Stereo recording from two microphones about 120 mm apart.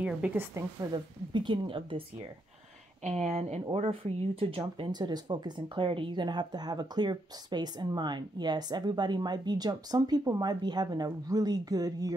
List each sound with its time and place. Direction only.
0.0 s a woman's voice: 15° right (ahead or behind)
0.9 s a woman's voice: 40° right (ahead or behind)
3.0 s a woman's voice: 70° right (ahead or behind)
3.8 s speech: 50° right (ahead or behind); by 12.2 s 30° right (ahead or behind)